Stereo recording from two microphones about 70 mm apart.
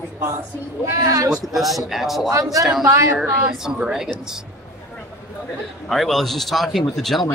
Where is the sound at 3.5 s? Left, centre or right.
Centre.